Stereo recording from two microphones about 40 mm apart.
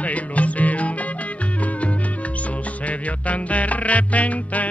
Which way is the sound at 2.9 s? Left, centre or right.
Left.